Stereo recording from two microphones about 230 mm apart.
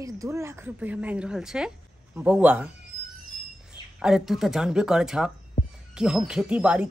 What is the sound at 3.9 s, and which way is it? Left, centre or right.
A woman's voice, centre.